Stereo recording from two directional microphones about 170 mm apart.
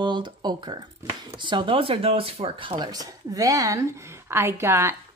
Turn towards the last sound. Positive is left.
turn(degrees=-15)  # may be behind; listen again after turning